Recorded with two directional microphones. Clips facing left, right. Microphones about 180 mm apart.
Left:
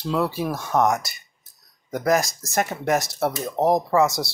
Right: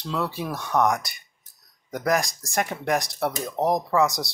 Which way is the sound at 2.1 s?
5° left (ahead or behind).